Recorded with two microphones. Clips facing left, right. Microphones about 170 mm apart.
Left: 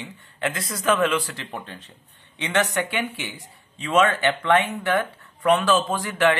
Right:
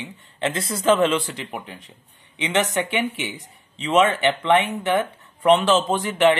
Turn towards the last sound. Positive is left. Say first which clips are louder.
# right 3 dB
turn(degrees=-20)  # may be behind; listen again after turning